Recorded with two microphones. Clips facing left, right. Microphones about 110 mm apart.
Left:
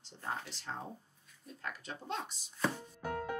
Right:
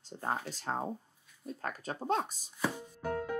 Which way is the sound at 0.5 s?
45° right (ahead or behind).